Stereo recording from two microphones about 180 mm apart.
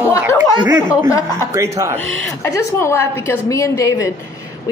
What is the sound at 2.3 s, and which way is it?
A woman's voice, 15° left (ahead or behind).